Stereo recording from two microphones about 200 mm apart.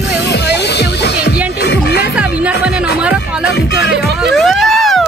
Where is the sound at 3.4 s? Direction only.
55° left (ahead or behind).